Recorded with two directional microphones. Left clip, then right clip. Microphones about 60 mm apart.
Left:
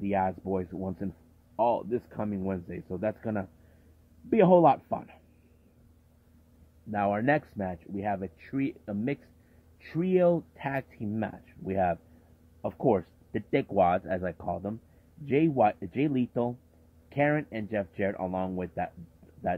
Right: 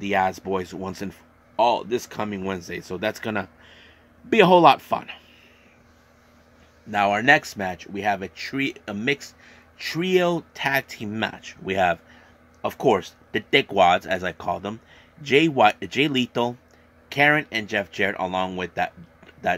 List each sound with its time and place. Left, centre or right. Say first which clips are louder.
0.0 s speech: right 7 dB; centre; by 5.2 s right
6.9 s speech: right 9 dB; centre
11.3 s speech: right 5 dB; right
12.8 s speech: right 6 dB; centre
13.5 s speech: right 8 dB; centre
14.5 s speech: right 7 dB; right
17.1 s speech: right 9 dB; centre